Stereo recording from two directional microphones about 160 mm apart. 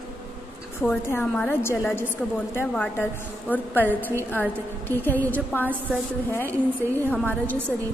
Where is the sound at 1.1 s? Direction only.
15° left (ahead or behind).